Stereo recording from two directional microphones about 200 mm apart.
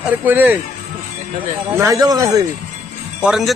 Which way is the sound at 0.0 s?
10° right (ahead or behind).